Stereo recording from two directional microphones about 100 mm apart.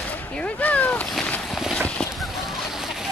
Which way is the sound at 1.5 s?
5° right (ahead or behind).